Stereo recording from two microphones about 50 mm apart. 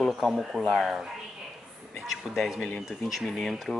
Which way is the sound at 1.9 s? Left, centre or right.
Centre.